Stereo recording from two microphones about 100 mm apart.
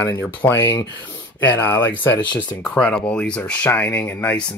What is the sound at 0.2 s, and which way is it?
Speech, 20° left (ahead or behind).